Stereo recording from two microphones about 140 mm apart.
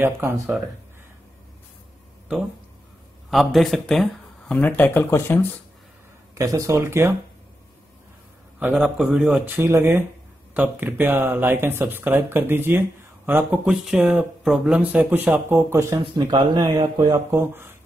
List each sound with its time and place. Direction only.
0.0 s speech: 15° right (ahead or behind)
3.3 s speech: centre (ahead or behind); by 5.5 s 15° left (ahead or behind)
6.3 s speech: 25° right (ahead or behind)
8.5 s speech: 5° right (ahead or behind)
9.6 s speech: 15° right (ahead or behind)
13.7 s speech: 5° right (ahead or behind)
15.7 s speech: 20° right (ahead or behind)
16.3 s speech: 30° right (ahead or behind)
17.3 s speech: 15° right (ahead or behind)